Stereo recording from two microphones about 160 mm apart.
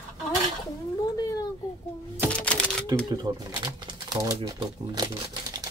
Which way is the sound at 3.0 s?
30° right (ahead or behind).